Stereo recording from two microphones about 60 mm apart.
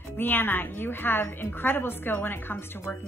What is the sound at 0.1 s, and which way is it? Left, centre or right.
Speech, left.